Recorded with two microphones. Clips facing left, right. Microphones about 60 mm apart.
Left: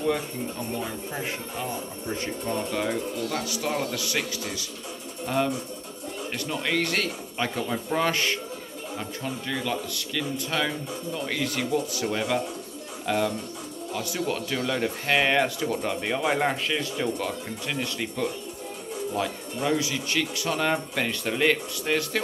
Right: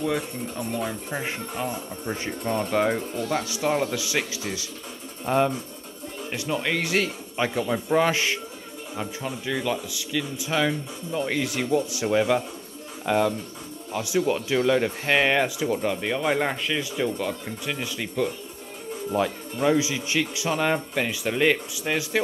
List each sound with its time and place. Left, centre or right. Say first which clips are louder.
1.1 s speech: right 2 dB; right; by 18.2 s centre
19.1 s speech: right 6 dB; centre